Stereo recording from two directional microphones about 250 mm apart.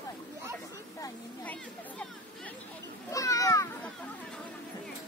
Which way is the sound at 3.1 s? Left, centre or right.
Centre.